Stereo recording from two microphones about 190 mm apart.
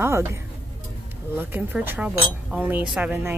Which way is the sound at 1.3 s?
10° right (ahead or behind).